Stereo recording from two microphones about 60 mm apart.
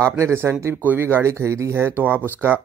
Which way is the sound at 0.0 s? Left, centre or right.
Right.